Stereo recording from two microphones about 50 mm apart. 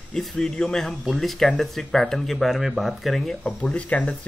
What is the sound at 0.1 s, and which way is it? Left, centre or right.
Speech, centre.